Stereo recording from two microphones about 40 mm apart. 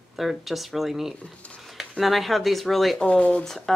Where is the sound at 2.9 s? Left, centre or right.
Left.